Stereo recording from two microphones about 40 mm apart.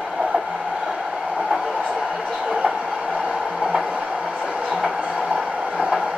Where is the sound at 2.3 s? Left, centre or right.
Right.